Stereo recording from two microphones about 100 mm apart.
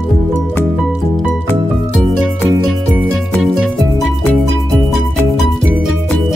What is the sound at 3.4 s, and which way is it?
Music, centre (ahead or behind).